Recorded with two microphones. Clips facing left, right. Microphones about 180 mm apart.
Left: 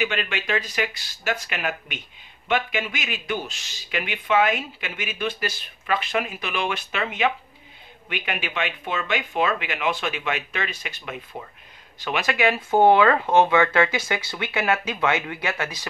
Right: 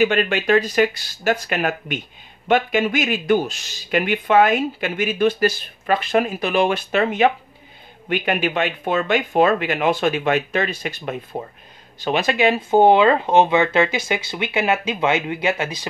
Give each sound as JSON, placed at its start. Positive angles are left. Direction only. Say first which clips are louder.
{"t": 0.0, "sound": "speech", "louder": "right 9 dB", "side_deg": -45}
{"t": 12.0, "sound": "speech", "louder": "right 5 dB", "side_deg": -30}